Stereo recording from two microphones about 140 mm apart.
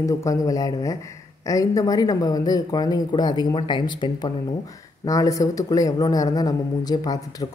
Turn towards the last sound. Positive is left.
turn(degrees=25)  # may be behind; listen again after turning